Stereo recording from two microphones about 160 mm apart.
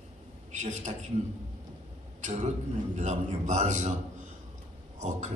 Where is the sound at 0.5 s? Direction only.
50° right (ahead or behind).